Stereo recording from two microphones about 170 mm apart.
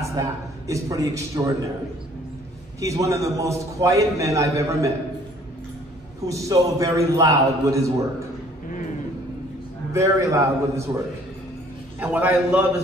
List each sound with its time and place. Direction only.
0.0 s a man's voice: 20° right (ahead or behind)
2.8 s a man's voice: 20° right (ahead or behind)
6.2 s a man's voice: 20° right (ahead or behind)
8.6 s a sound: 50° left (ahead or behind)
9.9 s a man's voice: 20° right (ahead or behind)
12.0 s a man's voice: 10° right (ahead or behind)